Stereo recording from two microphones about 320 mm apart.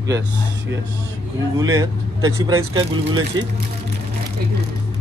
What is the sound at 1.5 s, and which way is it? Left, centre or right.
Speech, centre.